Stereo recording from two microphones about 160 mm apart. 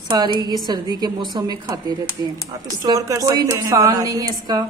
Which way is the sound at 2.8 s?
20° right (ahead or behind).